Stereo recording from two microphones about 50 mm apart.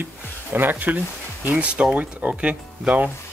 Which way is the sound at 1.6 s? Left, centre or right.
Right.